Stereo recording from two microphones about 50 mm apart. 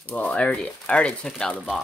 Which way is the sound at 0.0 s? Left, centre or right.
Left.